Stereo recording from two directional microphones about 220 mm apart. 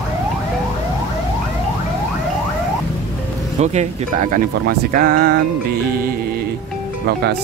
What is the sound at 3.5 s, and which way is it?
Speech, 30° right (ahead or behind).